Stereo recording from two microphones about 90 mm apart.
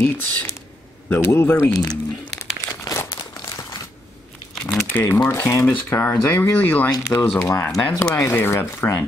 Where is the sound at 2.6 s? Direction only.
40° left (ahead or behind).